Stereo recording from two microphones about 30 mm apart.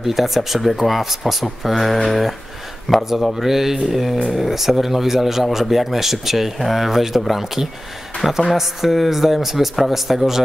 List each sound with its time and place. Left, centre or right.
0.0 s speech: centre
3.4 s speech: centre